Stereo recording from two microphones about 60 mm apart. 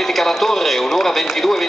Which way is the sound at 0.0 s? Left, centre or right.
Centre.